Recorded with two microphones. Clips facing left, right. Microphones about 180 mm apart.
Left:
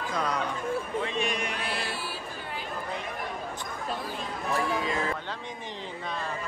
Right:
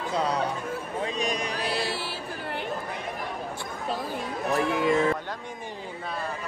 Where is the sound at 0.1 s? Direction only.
30° right (ahead or behind).